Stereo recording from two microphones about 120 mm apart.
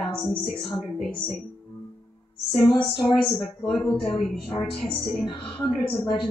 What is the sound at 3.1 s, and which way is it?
A woman's voice, 10° left (ahead or behind).